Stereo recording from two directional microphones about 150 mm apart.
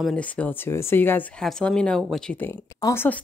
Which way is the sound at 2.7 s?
20° left (ahead or behind).